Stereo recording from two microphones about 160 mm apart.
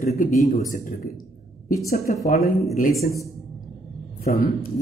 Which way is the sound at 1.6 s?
70° left (ahead or behind).